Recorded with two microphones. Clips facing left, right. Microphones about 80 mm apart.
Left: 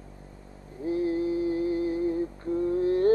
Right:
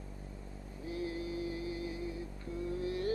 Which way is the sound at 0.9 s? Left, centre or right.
Left.